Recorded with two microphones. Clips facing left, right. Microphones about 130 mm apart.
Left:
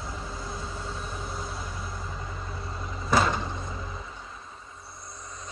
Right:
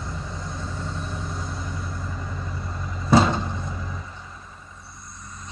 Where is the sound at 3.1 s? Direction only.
25° right (ahead or behind).